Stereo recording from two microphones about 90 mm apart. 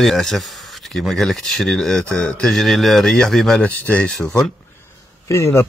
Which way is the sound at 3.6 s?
20° left (ahead or behind).